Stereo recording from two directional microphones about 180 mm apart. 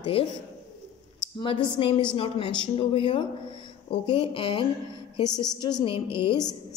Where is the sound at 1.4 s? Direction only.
30° left (ahead or behind).